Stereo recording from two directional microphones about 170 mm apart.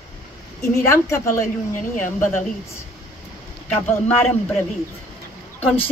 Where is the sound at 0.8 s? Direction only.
15° left (ahead or behind).